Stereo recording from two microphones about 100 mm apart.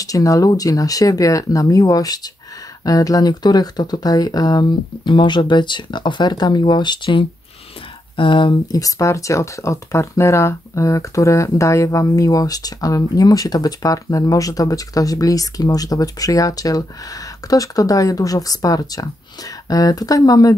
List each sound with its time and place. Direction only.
0.0 s speech: 35° left (ahead or behind)
8.2 s speech: 55° left (ahead or behind)
8.7 s speech: 35° left (ahead or behind)